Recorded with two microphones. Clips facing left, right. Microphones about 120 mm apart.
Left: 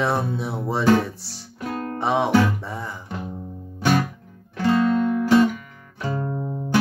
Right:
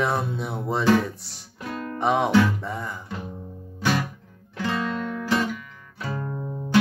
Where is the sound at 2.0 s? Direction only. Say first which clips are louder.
Even; 5° left (ahead or behind).